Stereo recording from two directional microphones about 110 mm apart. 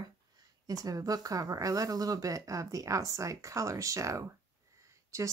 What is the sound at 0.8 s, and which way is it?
Speech, 35° right (ahead or behind).